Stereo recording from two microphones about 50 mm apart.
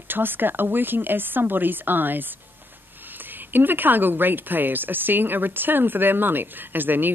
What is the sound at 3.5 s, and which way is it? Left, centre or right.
Speech, right.